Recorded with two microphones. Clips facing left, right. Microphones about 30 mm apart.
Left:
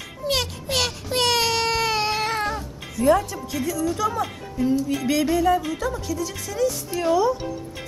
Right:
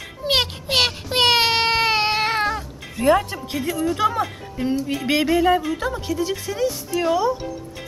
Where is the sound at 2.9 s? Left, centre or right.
Right.